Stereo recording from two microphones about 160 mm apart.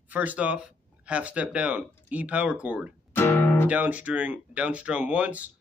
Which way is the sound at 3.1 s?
15° left (ahead or behind).